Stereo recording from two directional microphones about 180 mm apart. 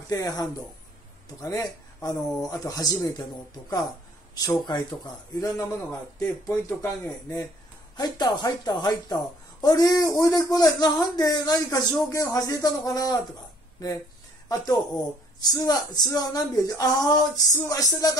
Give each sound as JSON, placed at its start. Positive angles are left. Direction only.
{"t": 0.1, "sound": "speech", "side_deg": 20}
{"t": 4.4, "sound": "speech", "side_deg": 20}
{"t": 14.5, "sound": "speech", "side_deg": 20}